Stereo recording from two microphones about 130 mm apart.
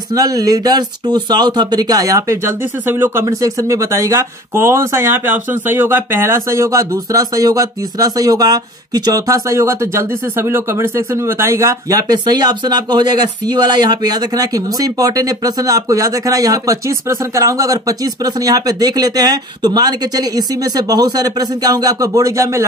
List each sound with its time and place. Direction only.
0.1 s speech: 25° right (ahead or behind)